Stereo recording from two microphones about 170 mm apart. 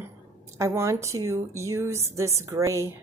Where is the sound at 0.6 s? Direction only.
15° right (ahead or behind).